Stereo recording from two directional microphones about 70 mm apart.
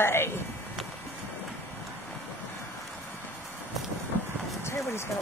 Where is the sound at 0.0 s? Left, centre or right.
Left.